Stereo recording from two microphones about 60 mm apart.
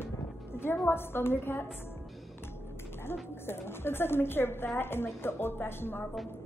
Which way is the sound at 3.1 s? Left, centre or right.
Left.